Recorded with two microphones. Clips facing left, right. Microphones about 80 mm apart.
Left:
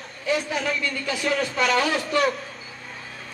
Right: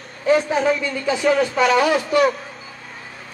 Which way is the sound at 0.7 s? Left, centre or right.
Centre.